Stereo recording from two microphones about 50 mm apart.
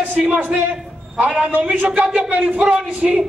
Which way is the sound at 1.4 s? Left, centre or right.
Right.